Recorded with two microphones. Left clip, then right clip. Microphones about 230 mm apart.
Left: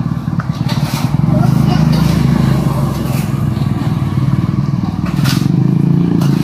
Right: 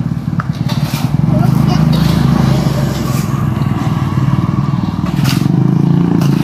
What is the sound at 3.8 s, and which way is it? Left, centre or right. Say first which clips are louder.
Motorcycle: right 2 dB; right.